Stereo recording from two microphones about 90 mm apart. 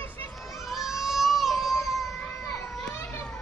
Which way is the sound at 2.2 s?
30° left (ahead or behind).